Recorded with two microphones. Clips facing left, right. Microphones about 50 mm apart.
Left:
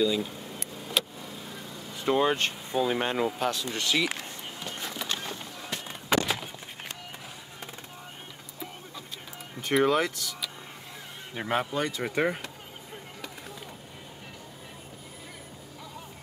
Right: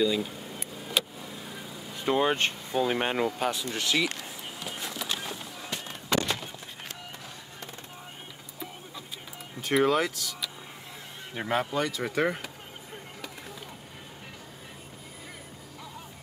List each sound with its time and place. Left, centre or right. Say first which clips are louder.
0.0 s vehicle: even; centre
2.7 s speech: left 1 dB; centre
3.0 s speech: even; centre
3.7 s a sound: even; centre
9.6 s speech: even; centre